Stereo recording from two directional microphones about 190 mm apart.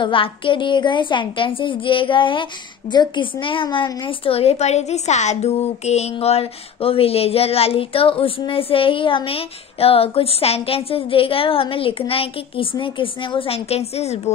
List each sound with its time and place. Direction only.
0.0 s a woman's voice: 25° left (ahead or behind)